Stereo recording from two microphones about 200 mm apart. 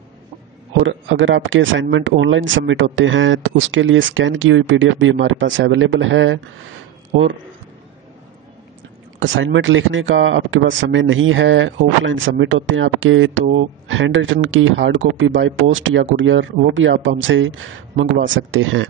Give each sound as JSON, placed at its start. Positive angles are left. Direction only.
{"t": 0.8, "sound": "speech", "side_deg": -75}
{"t": 9.2, "sound": "speech", "side_deg": -70}